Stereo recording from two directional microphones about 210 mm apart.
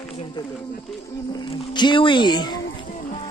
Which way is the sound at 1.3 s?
20° left (ahead or behind).